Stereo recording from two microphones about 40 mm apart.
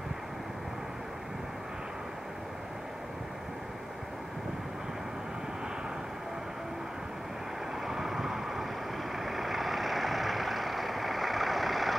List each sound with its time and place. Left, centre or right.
7.8 s vehicle: centre